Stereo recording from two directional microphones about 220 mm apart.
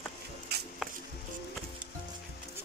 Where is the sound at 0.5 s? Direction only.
45° right (ahead or behind).